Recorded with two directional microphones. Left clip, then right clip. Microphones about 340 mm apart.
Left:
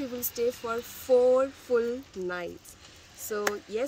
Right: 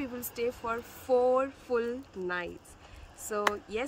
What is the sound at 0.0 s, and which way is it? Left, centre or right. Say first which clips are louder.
Speech: left 4 dB; right.